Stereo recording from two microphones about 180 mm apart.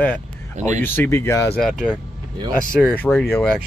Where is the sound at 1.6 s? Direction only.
5° left (ahead or behind).